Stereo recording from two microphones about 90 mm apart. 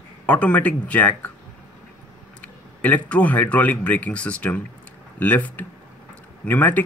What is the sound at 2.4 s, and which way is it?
Speech, 15° left (ahead or behind).